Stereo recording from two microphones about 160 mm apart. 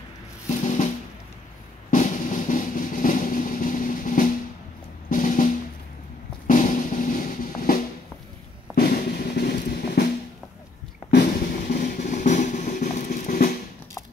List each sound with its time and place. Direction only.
0.5 s music: 40° left (ahead or behind)
1.9 s drum: 60° left (ahead or behind)
11.1 s music: 70° left (ahead or behind)